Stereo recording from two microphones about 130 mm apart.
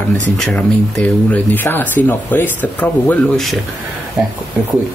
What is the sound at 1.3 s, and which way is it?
Speech, 15° left (ahead or behind).